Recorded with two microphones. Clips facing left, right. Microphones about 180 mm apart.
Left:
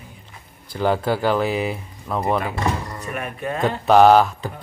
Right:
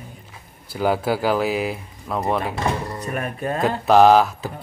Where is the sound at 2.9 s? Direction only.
35° right (ahead or behind).